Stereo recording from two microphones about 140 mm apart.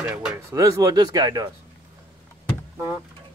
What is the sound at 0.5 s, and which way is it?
Speech, 25° right (ahead or behind).